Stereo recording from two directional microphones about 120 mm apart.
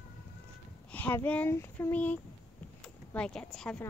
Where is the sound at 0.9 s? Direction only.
15° left (ahead or behind).